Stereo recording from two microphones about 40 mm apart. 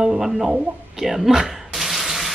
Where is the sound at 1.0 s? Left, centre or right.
Centre.